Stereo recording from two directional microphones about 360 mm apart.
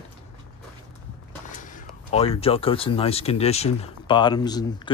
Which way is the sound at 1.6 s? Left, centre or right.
Centre.